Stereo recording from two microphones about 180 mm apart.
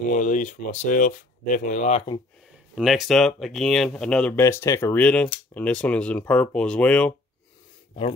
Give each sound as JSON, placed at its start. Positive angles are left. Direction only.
{"t": 0.1, "sound": "speech", "side_deg": 45}
{"t": 2.7, "sound": "speech", "side_deg": 0}